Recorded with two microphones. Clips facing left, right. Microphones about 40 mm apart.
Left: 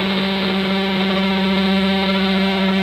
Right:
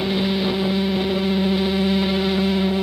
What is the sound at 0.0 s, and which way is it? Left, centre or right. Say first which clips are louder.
Music: left 2 dB; left.